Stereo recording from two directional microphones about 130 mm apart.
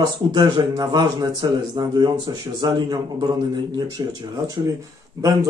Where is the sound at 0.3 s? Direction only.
35° right (ahead or behind).